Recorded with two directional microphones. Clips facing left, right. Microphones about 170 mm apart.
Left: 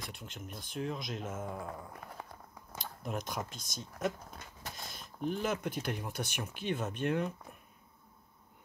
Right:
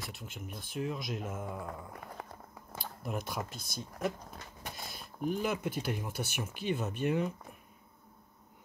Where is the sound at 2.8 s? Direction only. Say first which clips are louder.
Right 1 dB; 5° right (ahead or behind).